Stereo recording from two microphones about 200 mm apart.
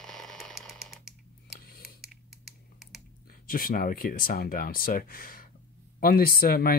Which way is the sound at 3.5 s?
45° left (ahead or behind).